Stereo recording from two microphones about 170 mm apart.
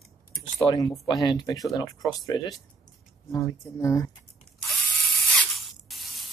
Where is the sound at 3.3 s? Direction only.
20° left (ahead or behind).